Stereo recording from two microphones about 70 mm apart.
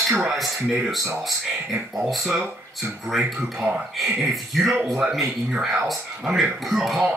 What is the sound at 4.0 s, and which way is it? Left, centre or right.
Speech, centre.